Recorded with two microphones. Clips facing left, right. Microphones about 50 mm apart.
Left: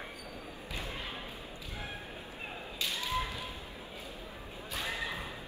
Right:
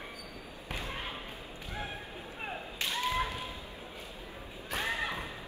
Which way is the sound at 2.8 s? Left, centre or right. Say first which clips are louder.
Right 3 dB; right.